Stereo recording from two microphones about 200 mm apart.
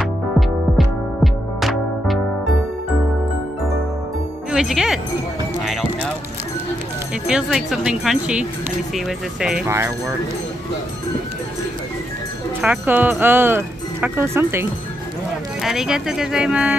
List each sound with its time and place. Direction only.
0.4 s music: centre (ahead or behind)
4.5 s speech: centre (ahead or behind)
5.6 s clip-clop: centre (ahead or behind)
7.2 s speech: 5° right (ahead or behind)
9.7 s speech: 15° right (ahead or behind)
12.6 s speech: 10° right (ahead or behind)